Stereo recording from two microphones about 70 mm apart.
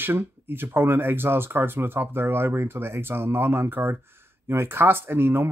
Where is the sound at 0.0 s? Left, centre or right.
Right.